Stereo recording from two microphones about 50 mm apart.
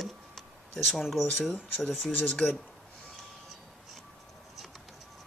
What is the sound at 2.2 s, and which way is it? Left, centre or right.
Speech, left.